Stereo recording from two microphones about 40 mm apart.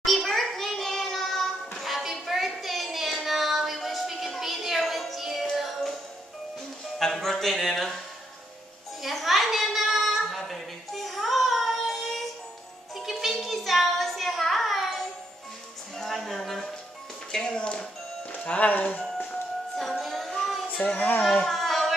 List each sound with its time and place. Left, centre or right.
0.0 s children playing: centre
1.8 s child singing: centre
5.2 s music: centre
7.0 s speech: centre
9.0 s a sound: centre
12.9 s music: centre
16.0 s a sound: centre
17.3 s a sound: centre
18.3 s speech: left
19.8 s child singing: centre
20.6 s a sound: left
21.5 s music: centre